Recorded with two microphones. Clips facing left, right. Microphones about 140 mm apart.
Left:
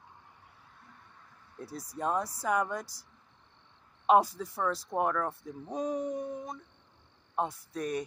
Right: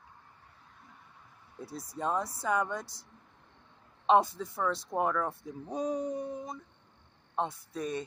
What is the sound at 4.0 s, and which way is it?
Speech, 5° left (ahead or behind).